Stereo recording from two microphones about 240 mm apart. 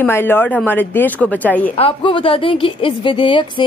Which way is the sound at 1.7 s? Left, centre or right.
Left.